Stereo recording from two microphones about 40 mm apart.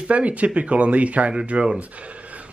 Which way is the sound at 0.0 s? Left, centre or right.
Right.